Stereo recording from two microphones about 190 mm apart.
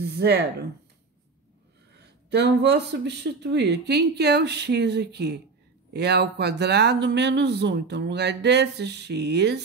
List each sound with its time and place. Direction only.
0.0 s speech: 60° right (ahead or behind)
2.2 s speech: 65° right (ahead or behind)